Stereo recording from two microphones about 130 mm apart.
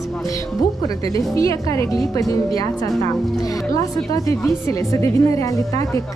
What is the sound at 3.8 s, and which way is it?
Speech, 25° left (ahead or behind).